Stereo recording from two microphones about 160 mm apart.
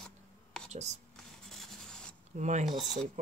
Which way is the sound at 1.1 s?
Centre (ahead or behind).